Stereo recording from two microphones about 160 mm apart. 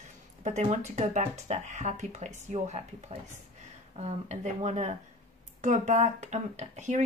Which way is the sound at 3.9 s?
45° right (ahead or behind).